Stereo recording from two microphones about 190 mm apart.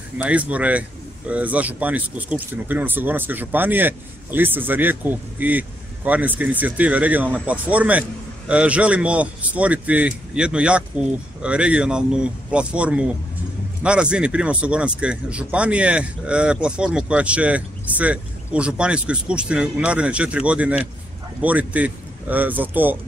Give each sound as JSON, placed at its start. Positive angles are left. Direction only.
{"t": 0.2, "sound": "speech", "side_deg": -5}